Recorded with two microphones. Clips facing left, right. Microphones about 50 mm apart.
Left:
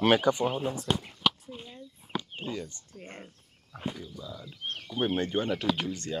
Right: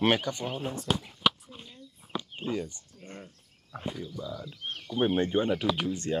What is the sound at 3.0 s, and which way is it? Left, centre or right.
Speech, left.